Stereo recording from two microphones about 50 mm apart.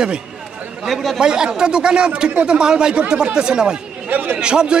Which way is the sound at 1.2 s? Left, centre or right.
Centre.